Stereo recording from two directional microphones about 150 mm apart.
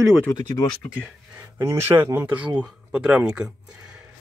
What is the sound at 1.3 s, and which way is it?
Speech, 15° right (ahead or behind).